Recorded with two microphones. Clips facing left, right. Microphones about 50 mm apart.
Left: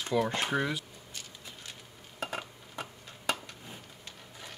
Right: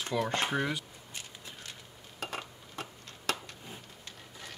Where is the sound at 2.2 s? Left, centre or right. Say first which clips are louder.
Left 2 dB; centre.